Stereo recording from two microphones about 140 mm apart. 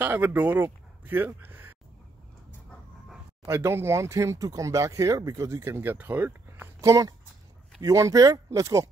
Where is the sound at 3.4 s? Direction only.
20° right (ahead or behind).